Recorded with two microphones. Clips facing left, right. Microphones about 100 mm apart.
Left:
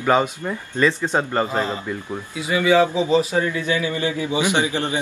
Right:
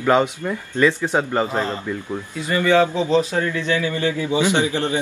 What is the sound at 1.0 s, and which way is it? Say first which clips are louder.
Speech: right 1 dB; 10° right (ahead or behind).